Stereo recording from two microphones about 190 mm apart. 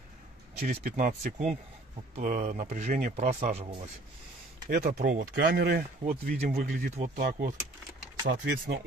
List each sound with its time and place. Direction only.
0.6 s speech: 50° right (ahead or behind)
4.6 s speech: 50° right (ahead or behind)
8.3 s speech: 65° right (ahead or behind)